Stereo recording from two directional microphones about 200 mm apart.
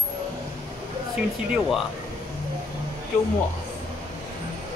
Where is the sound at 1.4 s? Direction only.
Centre (ahead or behind).